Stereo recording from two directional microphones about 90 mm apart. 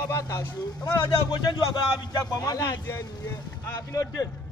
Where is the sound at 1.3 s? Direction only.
50° left (ahead or behind).